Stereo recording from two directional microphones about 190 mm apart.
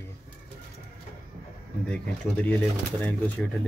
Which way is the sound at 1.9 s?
5° left (ahead or behind).